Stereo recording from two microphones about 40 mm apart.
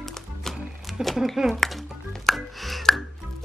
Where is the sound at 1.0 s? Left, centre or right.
Right.